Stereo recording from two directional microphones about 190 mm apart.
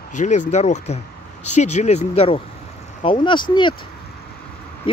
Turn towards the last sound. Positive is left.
turn(degrees=25)  # may be behind; listen again after turning